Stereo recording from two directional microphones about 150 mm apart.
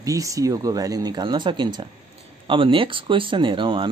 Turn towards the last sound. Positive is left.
turn(degrees=-35)  # may be behind; listen again after turning